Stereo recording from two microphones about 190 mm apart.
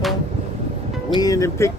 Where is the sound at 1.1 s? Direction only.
15° left (ahead or behind).